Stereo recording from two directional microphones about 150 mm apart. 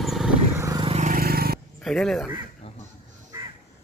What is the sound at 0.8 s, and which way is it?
Vehicle, 50° right (ahead or behind).